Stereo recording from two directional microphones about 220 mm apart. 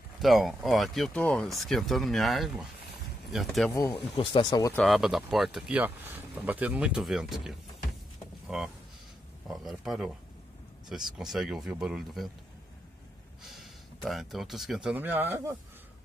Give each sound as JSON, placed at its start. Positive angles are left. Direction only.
{"t": 0.2, "sound": "speech", "side_deg": 0}
{"t": 3.9, "sound": "speech", "side_deg": 25}
{"t": 4.7, "sound": "speech", "side_deg": 0}
{"t": 11.1, "sound": "speech", "side_deg": 0}
{"t": 13.4, "sound": "speech", "side_deg": 0}